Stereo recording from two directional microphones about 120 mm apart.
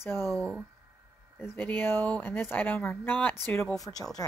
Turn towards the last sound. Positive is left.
turn(degrees=30)  # may be behind; listen again after turning